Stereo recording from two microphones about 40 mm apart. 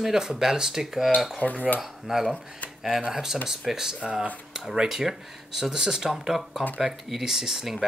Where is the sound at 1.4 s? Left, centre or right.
Left.